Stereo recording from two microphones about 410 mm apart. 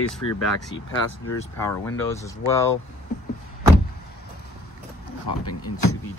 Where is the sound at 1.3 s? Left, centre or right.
Centre.